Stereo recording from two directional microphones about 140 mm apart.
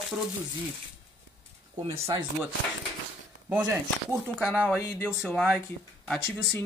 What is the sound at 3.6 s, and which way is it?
Speech, 20° right (ahead or behind).